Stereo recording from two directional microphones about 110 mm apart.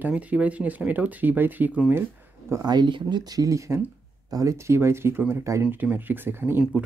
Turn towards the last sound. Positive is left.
turn(degrees=-10)  # may be behind; listen again after turning